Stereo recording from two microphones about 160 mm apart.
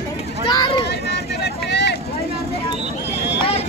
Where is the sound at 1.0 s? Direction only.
90° left.